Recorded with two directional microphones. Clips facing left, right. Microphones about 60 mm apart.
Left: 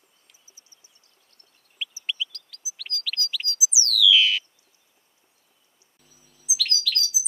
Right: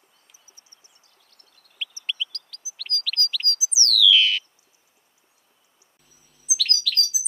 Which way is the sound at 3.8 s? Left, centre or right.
Centre.